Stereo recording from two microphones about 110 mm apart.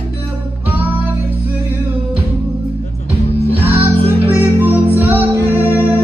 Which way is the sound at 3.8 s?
15° right (ahead or behind).